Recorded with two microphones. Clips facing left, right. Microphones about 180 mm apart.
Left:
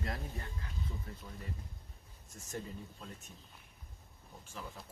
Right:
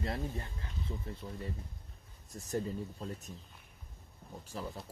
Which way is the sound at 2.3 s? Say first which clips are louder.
Right 8 dB; 35° right (ahead or behind).